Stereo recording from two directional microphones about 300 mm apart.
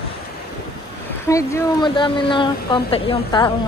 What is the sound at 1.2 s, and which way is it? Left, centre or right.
Speech, centre.